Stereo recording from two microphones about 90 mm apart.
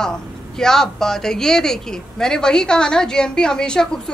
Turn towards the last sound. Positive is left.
turn(degrees=10)  # may be behind; listen again after turning